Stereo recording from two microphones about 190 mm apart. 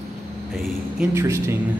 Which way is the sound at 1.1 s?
15° right (ahead or behind).